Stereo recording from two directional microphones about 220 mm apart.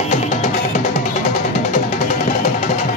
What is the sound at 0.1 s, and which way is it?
Music, 35° left (ahead or behind).